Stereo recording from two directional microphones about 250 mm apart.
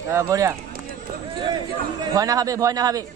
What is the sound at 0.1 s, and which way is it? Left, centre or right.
A man's voice, centre.